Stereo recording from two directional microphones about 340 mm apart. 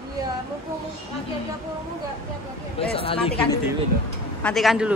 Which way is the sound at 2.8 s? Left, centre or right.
Centre.